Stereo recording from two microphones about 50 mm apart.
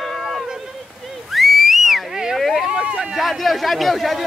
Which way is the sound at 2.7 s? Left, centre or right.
Centre.